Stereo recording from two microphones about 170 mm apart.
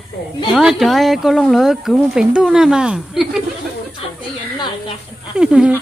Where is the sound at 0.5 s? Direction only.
Centre (ahead or behind).